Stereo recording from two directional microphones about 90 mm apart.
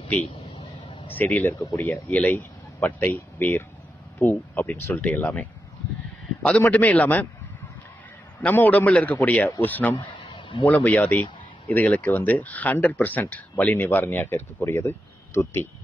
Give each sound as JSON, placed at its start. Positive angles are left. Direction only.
{"t": 0.3, "sound": "a sound", "side_deg": 60}
{"t": 1.0, "sound": "speech", "side_deg": 20}
{"t": 1.6, "sound": "speech", "side_deg": 35}
{"t": 1.9, "sound": "speech", "side_deg": 15}
{"t": 6.6, "sound": "a man's voice", "side_deg": 15}
{"t": 8.4, "sound": "a man's voice", "side_deg": 20}
{"t": 9.9, "sound": "a sound", "side_deg": 70}
{"t": 10.6, "sound": "a man's voice", "side_deg": 15}